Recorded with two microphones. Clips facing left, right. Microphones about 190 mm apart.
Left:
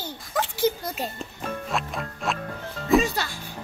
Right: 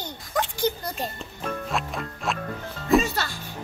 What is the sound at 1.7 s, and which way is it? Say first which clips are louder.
Music: even; centre (ahead or behind).